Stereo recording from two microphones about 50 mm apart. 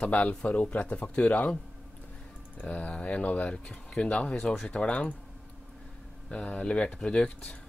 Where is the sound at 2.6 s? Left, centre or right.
Left.